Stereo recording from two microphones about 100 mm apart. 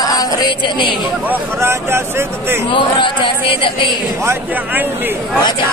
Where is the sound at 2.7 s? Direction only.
55° left (ahead or behind).